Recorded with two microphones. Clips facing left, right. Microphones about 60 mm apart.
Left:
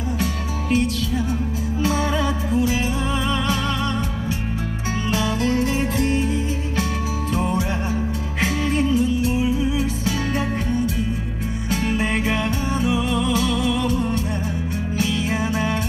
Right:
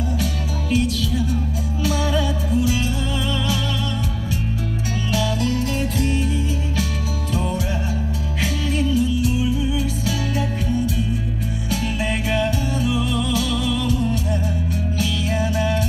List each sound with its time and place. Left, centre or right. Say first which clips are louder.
0.2 s music: left 1 dB; left
2.5 s music: even; left
5.1 s music: left 1 dB; left
7.3 s music: left 1 dB; left
11.7 s music: left 3 dB; left